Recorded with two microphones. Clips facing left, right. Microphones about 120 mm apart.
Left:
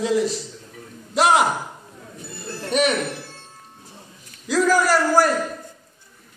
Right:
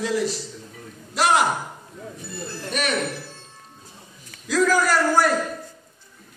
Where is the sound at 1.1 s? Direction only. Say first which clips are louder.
Left 3 dB; 20° left (ahead or behind).